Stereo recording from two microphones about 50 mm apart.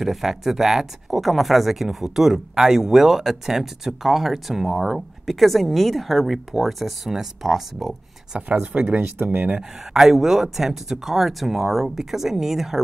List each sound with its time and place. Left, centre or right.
0.0 s speech: centre
8.4 s speech: right
9.6 s speech: centre